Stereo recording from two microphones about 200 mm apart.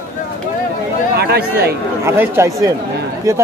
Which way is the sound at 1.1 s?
55° right (ahead or behind).